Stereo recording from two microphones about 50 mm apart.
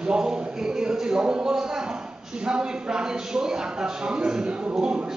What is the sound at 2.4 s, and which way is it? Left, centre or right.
Speech, centre.